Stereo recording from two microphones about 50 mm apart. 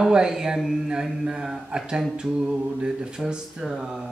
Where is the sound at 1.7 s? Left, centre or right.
Centre.